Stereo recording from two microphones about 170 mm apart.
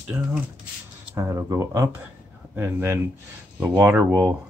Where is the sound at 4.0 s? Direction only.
20° right (ahead or behind).